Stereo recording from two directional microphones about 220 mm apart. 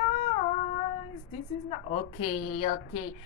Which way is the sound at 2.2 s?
25° left (ahead or behind).